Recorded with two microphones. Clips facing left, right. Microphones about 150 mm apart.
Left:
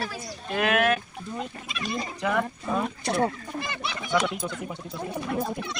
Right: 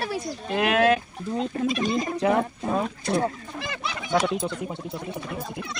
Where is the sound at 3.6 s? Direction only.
90° right.